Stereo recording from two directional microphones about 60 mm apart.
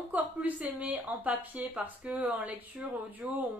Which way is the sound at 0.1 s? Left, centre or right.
Right.